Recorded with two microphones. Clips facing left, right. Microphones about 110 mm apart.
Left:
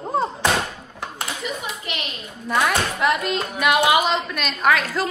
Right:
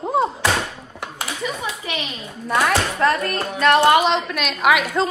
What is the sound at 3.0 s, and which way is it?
A woman's voice, 15° left (ahead or behind).